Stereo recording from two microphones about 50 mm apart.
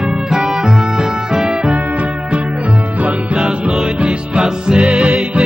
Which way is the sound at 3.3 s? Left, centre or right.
Centre.